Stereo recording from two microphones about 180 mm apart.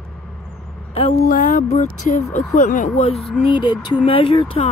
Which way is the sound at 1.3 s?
45° left (ahead or behind).